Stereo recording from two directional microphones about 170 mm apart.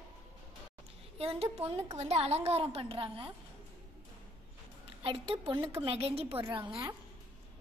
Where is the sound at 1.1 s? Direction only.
35° right (ahead or behind).